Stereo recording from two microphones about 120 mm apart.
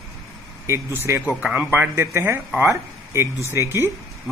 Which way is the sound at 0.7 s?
20° right (ahead or behind).